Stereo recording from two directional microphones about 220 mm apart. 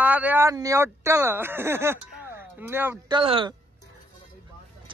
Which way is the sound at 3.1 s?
25° right (ahead or behind).